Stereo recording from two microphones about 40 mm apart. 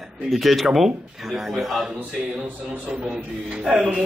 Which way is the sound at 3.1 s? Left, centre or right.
Centre.